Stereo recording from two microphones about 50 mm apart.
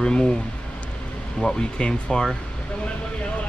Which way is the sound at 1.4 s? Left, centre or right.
Centre.